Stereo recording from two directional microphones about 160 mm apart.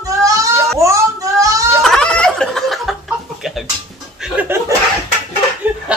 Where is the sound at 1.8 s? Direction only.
5° left (ahead or behind).